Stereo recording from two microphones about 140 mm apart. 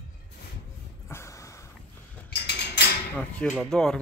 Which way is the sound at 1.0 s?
20° left (ahead or behind).